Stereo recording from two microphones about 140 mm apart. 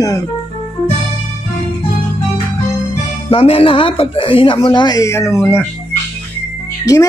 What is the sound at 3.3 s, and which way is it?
Speech, 40° left (ahead or behind).